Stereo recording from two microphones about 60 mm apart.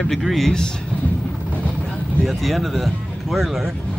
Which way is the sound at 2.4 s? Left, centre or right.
Centre.